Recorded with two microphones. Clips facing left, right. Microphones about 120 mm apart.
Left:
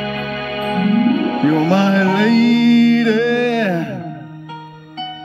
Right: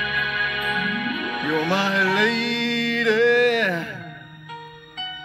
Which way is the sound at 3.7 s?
30° left (ahead or behind).